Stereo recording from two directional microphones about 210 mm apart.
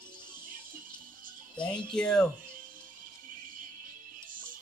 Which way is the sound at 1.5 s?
5° left (ahead or behind).